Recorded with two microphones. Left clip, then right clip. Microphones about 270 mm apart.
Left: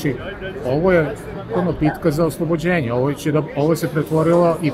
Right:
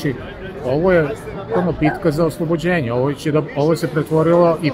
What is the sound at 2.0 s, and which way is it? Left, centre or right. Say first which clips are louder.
Speech: left 1 dB; centre.